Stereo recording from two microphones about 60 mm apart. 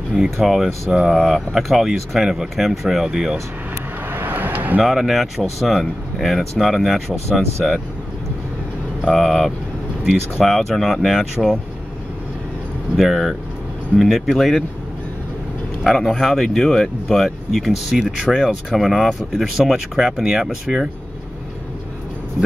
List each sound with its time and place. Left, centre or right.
0.2 s speech: centre
4.1 s vehicle: right
4.8 s speech: centre
9.0 s speech: centre
12.9 s speech: centre
15.8 s speech: centre